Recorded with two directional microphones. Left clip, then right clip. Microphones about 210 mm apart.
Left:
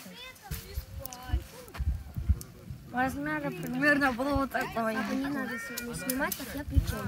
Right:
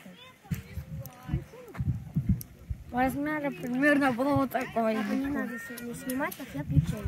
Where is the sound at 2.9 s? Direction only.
35° right (ahead or behind).